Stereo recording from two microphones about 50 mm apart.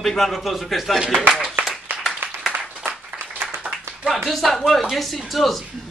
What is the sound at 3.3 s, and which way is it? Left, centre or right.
Clapping, right.